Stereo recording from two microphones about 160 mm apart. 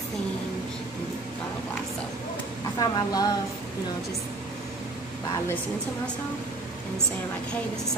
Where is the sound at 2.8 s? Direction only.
25° left (ahead or behind).